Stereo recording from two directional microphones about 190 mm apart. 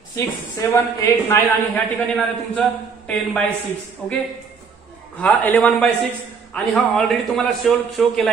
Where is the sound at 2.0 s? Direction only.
5° left (ahead or behind).